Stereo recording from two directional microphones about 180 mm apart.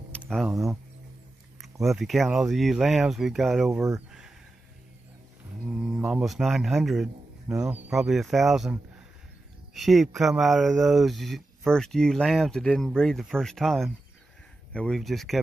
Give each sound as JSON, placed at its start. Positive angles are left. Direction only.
{"t": 0.3, "sound": "speech", "side_deg": 0}
{"t": 1.6, "sound": "speech", "side_deg": 0}
{"t": 5.7, "sound": "a man's voice", "side_deg": -5}
{"t": 9.8, "sound": "speech", "side_deg": 0}